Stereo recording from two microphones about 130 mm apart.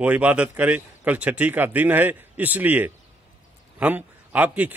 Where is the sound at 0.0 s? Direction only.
10° right (ahead or behind).